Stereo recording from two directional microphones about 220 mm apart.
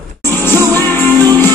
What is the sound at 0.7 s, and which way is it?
Music, 10° left (ahead or behind).